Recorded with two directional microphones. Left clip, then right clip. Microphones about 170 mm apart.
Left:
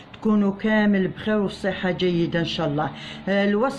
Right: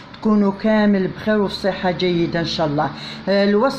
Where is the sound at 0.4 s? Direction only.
45° left (ahead or behind).